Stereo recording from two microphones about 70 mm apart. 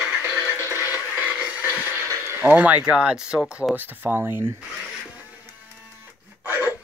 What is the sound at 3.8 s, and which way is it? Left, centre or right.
Speech, right.